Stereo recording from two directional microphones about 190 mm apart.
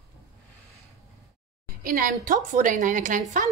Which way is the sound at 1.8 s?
45° right (ahead or behind).